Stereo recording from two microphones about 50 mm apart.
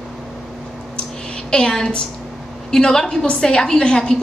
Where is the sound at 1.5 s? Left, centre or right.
Centre.